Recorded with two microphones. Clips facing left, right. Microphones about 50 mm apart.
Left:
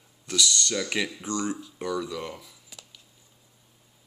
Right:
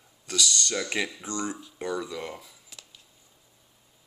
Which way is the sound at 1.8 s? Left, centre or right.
Right.